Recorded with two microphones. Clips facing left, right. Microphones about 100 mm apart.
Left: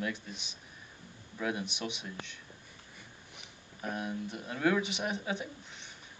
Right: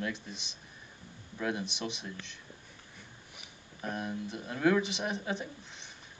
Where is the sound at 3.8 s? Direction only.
5° left (ahead or behind).